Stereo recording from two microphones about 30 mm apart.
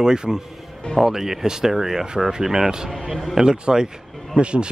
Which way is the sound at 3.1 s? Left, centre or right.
Centre.